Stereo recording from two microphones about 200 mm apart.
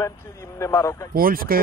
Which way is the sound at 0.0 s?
15° left (ahead or behind).